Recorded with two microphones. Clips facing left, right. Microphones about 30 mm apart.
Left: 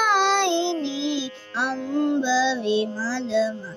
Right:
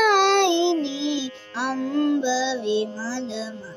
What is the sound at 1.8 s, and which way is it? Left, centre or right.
Music, right.